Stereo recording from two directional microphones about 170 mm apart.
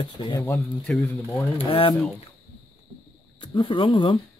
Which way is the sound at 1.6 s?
30° left (ahead or behind).